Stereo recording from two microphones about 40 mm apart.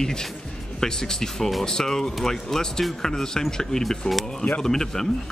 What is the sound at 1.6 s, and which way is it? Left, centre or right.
Speech, centre.